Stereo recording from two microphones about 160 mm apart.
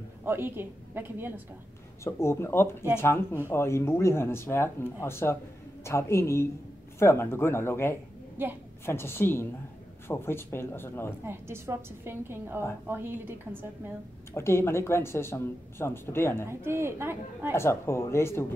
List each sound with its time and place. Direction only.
0.2 s a woman's voice: 15° right (ahead or behind)
2.0 s speech: 15° left (ahead or behind)
8.4 s a woman's voice: 15° right (ahead or behind)
8.8 s speech: 15° left (ahead or behind)
11.2 s a woman's voice: 15° right (ahead or behind)
14.3 s speech: 15° left (ahead or behind)
16.4 s a woman's voice: 15° right (ahead or behind)
17.6 s speech: 15° left (ahead or behind)